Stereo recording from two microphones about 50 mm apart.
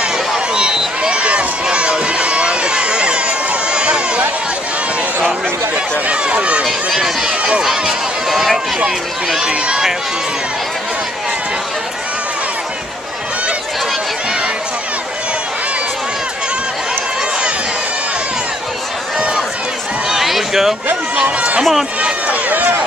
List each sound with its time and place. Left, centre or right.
0.7 s run: centre
6.0 s speech: right
6.6 s speech: centre
8.3 s speech: centre
9.5 s speech: right
19.1 s run: centre
20.1 s a sound: centre
21.4 s speech: right
22.0 s run: right